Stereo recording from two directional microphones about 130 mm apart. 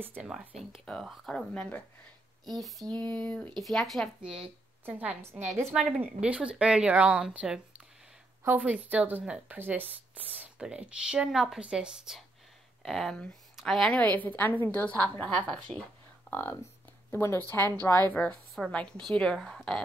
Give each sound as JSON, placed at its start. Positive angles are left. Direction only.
{"t": 0.0, "sound": "a woman's voice", "side_deg": -10}
{"t": 4.4, "sound": "a woman's voice", "side_deg": -15}